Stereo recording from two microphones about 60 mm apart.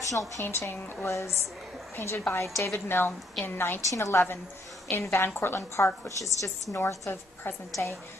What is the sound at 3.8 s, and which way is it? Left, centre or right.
A woman's voice, left.